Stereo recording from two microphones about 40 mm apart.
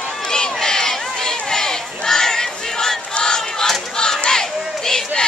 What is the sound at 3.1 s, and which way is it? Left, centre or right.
Battle cry, centre.